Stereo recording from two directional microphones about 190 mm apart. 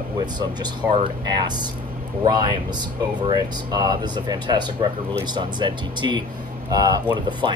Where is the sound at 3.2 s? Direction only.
20° right (ahead or behind).